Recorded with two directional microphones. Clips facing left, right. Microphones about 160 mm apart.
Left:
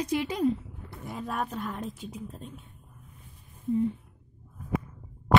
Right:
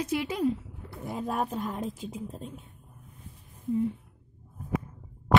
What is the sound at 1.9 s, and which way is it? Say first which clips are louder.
Speech: right 2 dB; 90° right.